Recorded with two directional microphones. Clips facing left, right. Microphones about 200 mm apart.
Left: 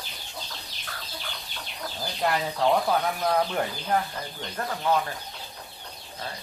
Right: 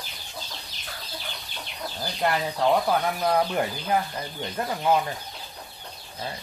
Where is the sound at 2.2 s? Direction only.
5° right (ahead or behind).